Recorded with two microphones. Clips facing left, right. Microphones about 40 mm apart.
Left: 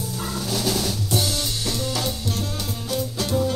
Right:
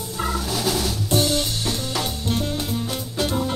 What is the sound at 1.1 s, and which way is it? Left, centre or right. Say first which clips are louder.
Music: right 6 dB; right.